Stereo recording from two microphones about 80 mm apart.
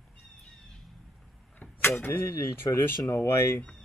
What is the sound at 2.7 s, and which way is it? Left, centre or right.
Speech, left.